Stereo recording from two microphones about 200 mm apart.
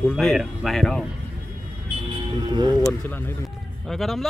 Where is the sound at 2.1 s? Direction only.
20° right (ahead or behind).